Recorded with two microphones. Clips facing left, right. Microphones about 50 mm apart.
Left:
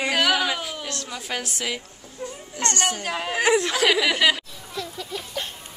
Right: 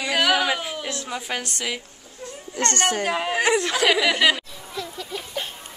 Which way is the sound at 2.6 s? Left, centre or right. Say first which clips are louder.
Right 2 dB; right.